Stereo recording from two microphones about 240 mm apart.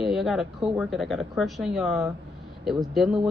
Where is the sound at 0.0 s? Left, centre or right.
Centre.